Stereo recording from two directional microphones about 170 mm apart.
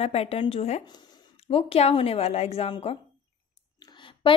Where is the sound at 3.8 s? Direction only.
30° left (ahead or behind).